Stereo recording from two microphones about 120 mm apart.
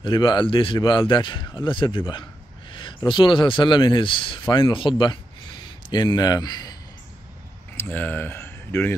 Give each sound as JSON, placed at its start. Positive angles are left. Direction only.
{"t": 0.0, "sound": "a man's voice", "side_deg": 40}
{"t": 2.7, "sound": "a sound", "side_deg": 40}
{"t": 3.1, "sound": "a man's voice", "side_deg": 40}
{"t": 7.7, "sound": "speech", "side_deg": 15}